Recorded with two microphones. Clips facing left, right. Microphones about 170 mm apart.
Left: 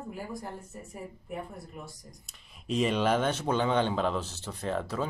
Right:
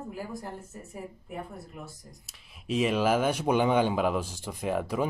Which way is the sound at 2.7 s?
5° right (ahead or behind).